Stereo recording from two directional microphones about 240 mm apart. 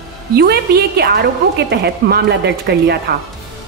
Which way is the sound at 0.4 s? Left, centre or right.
Right.